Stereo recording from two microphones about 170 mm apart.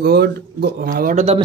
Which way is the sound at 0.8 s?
55° right (ahead or behind).